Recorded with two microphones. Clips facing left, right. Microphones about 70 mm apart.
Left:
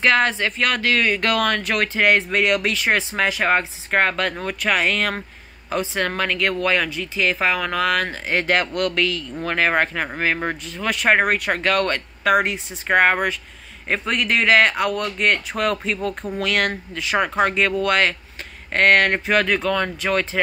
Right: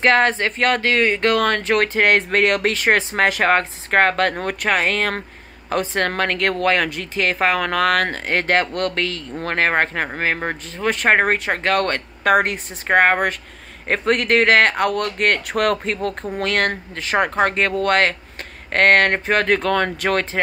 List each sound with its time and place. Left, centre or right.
0.0 s speech: right
3.3 s speech: right
8.5 s speech: right
10.1 s speech: right
10.6 s speech: right
16.3 s speech: right